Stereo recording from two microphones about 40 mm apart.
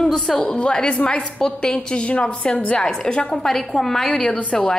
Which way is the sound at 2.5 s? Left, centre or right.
Left.